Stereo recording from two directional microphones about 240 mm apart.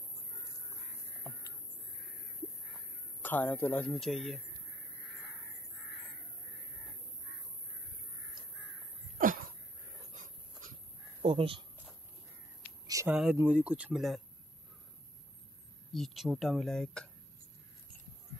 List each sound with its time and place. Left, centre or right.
3.2 s speech: centre
10.1 s dog: right
11.2 s speech: right
12.8 s speech: centre
15.9 s speech: centre